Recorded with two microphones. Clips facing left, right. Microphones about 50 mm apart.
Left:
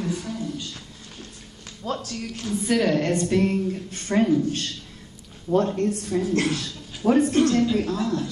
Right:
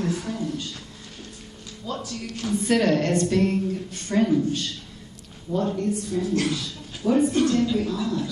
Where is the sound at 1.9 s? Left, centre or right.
Centre.